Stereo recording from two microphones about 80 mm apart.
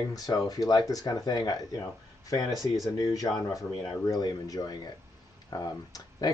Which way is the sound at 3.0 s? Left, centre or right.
Left.